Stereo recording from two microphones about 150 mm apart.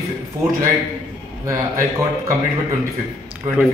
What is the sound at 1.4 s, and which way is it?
Speech, 20° right (ahead or behind).